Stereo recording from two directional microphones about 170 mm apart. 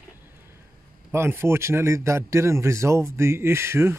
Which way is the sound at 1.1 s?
15° right (ahead or behind).